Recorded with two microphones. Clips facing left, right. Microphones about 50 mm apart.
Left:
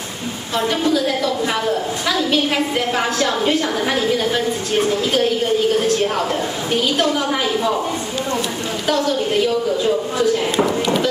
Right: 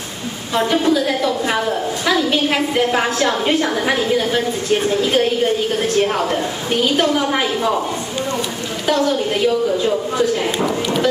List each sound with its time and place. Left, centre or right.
0.6 s a woman's voice: centre
7.0 s a woman's voice: centre